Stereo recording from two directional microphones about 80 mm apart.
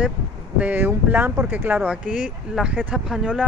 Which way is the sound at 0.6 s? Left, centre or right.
Right.